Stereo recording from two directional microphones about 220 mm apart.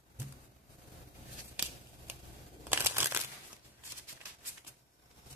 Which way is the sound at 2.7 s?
10° right (ahead or behind).